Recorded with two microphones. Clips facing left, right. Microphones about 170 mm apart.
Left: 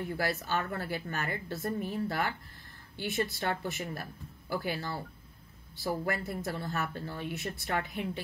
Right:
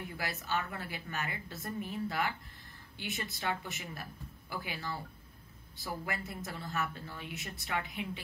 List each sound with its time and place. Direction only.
0.1 s speech: 40° left (ahead or behind)